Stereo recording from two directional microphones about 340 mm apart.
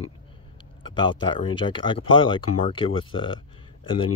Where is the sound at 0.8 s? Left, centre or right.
Centre.